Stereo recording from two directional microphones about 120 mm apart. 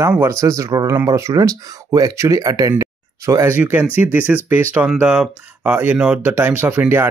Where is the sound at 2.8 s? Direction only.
25° right (ahead or behind).